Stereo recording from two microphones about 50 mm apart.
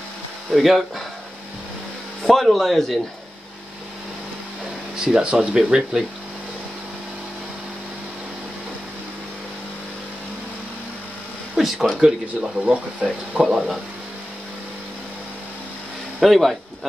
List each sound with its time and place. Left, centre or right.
0.5 s speech: centre
2.2 s speech: centre
4.9 s speech: centre
11.6 s a sound: centre
12.0 s speech: right
13.4 s speech: centre
16.2 s speech: centre